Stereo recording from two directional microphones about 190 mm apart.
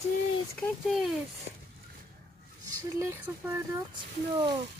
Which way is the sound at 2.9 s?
15° right (ahead or behind).